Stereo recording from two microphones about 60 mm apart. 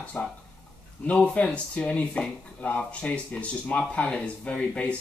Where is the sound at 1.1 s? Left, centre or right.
Centre.